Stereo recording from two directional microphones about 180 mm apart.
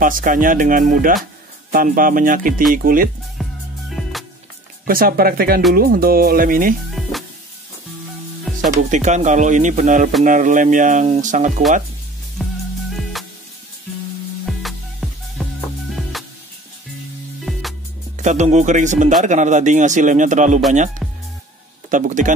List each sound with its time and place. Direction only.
0.0 s speech: 50° right (ahead or behind)
3.4 s music: centre (ahead or behind)
4.8 s speech: 55° right (ahead or behind)
6.9 s music: centre (ahead or behind)
8.6 s speech: 40° right (ahead or behind)
12.4 s music: centre (ahead or behind)
14.4 s music: centre (ahead or behind)
17.5 s music: centre (ahead or behind)
18.1 s speech: 40° right (ahead or behind)
21.0 s music: centre (ahead or behind)
21.9 s speech: 45° right (ahead or behind)